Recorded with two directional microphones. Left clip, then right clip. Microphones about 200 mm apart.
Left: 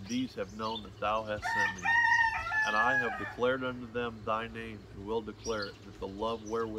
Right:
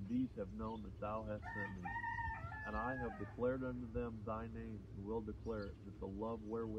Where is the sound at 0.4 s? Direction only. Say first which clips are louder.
Left 11 dB; 15° left (ahead or behind).